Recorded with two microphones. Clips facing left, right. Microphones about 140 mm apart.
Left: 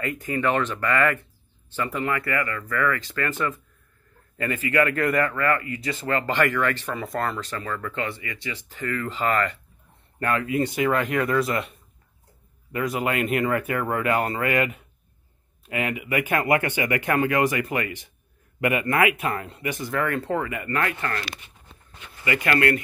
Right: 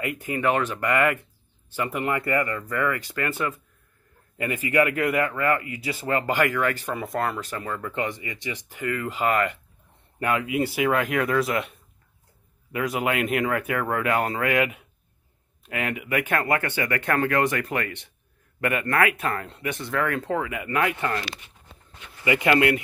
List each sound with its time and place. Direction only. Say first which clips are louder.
0.0 s speech: even; 15° right (ahead or behind)
12.7 s speech: even; centre (ahead or behind)